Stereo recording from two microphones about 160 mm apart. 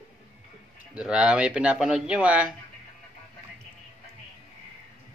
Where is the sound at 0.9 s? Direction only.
5° right (ahead or behind).